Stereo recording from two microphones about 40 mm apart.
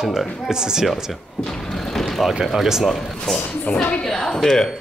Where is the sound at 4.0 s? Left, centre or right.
Centre.